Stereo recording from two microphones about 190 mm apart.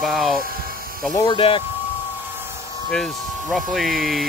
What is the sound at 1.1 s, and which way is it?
Speech, 25° left (ahead or behind).